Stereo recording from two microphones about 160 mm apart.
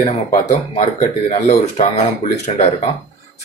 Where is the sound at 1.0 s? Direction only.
45° left (ahead or behind).